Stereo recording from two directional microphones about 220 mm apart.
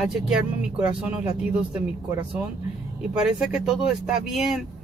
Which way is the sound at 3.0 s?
5° right (ahead or behind).